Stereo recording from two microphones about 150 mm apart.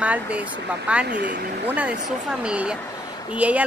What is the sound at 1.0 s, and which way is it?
Speech, 90° right.